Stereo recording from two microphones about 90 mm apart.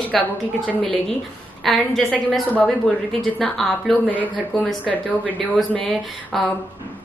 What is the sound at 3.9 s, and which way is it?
Speech, 20° left (ahead or behind).